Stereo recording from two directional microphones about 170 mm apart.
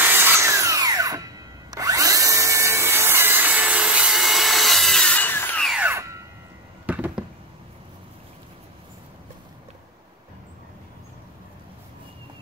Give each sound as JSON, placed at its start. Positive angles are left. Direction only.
{"t": 0.0, "sound": "tools", "side_deg": -10}
{"t": 1.7, "sound": "drill", "side_deg": -20}
{"t": 5.7, "sound": "tools", "side_deg": -10}
{"t": 6.9, "sound": "a sound", "side_deg": -10}